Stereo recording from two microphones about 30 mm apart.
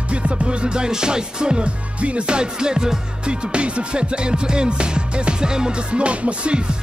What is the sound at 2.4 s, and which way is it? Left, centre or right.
Music, right.